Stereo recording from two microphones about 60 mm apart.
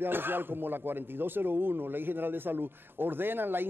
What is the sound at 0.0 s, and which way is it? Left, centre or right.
Speech, right.